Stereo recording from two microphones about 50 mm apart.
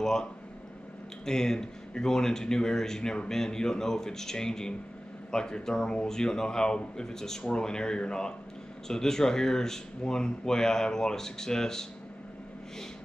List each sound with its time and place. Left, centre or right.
0.0 s speech: centre